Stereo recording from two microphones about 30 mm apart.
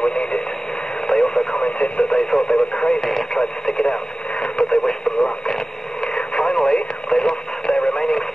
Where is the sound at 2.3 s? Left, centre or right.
Left.